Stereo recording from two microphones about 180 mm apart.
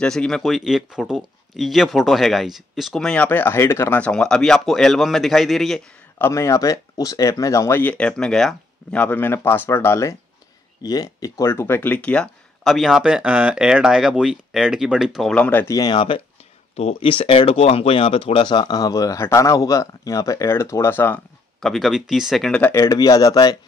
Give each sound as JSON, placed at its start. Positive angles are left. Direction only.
{"t": 0.0, "sound": "speech", "side_deg": 5}
{"t": 6.1, "sound": "speech", "side_deg": 15}